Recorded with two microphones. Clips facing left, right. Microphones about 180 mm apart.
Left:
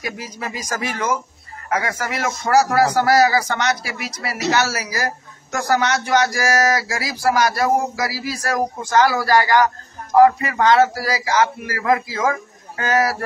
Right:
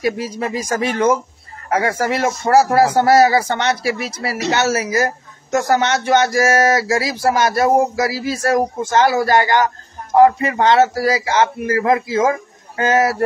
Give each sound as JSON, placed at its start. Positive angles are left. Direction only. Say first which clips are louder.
{"t": 0.0, "sound": "speech", "louder": "right 9 dB", "side_deg": -30}